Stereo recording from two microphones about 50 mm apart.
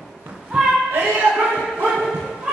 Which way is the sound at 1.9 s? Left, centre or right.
Centre.